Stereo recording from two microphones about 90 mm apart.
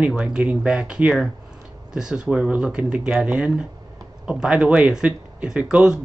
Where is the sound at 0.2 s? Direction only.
10° right (ahead or behind).